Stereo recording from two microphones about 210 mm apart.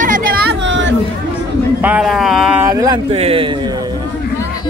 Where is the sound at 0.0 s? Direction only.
40° right (ahead or behind).